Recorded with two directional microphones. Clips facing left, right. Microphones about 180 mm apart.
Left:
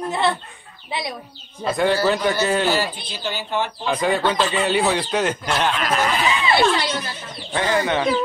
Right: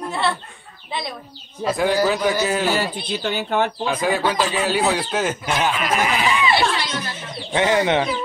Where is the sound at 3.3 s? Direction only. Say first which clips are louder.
Right 3 dB; 55° right (ahead or behind).